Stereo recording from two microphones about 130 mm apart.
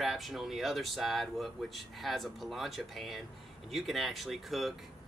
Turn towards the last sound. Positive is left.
turn(degrees=0)  # may be behind; listen again after turning